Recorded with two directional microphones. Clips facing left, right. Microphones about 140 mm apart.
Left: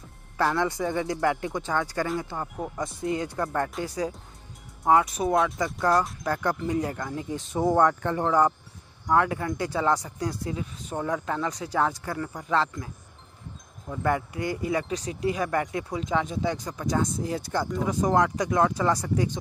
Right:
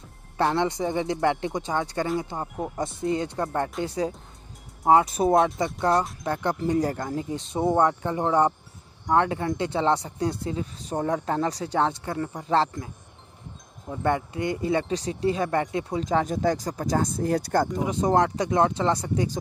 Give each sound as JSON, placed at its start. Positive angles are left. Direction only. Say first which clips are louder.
{"t": 0.4, "sound": "speech", "louder": "right 2 dB", "side_deg": -25}
{"t": 6.6, "sound": "speech", "louder": "right 3 dB", "side_deg": -40}
{"t": 17.3, "sound": "speech", "louder": "right 5 dB", "side_deg": -50}
{"t": 17.7, "sound": "speech", "louder": "left 2 dB", "side_deg": -25}